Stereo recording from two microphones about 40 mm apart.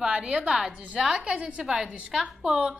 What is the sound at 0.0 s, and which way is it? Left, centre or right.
A woman's voice, centre.